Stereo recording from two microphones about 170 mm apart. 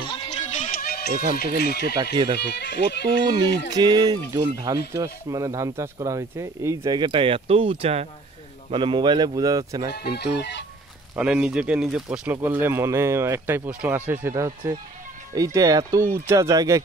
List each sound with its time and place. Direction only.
0.0 s music: 30° left (ahead or behind)
0.5 s music: 50° left (ahead or behind)
1.3 s speech: 65° left (ahead or behind)
2.5 s speech: 90° left
3.7 s speech: 25° right (ahead or behind)
9.9 s speech: 70° left (ahead or behind)
11.1 s speech: 5° right (ahead or behind)